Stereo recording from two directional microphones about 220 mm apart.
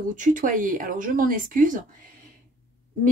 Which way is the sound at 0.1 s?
35° right (ahead or behind).